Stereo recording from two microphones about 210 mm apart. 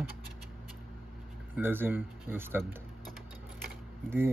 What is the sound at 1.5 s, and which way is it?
Speech, 10° right (ahead or behind).